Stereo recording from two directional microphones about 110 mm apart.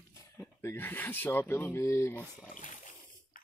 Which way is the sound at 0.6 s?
20° left (ahead or behind).